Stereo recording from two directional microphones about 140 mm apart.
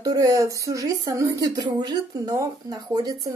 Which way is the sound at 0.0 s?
25° right (ahead or behind).